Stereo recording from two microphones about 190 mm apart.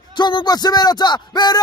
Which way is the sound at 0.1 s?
25° left (ahead or behind).